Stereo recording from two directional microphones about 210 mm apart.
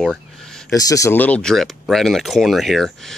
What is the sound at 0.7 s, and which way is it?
Speech, 15° left (ahead or behind).